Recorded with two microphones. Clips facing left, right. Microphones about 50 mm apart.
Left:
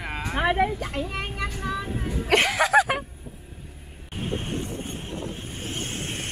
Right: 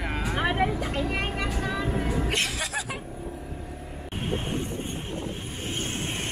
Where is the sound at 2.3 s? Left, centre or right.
Left.